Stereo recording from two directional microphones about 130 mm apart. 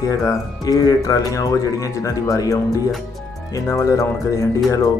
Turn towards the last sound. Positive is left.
turn(degrees=25)  # may be behind; listen again after turning